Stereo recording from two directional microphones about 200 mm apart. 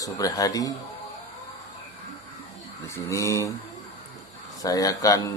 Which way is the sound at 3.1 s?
15° left (ahead or behind).